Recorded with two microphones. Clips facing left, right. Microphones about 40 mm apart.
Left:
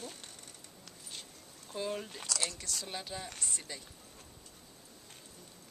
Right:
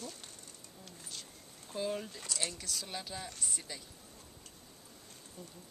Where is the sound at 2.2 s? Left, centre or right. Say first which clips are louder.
Left 2 dB; left.